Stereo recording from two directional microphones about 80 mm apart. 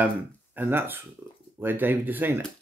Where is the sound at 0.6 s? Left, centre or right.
Right.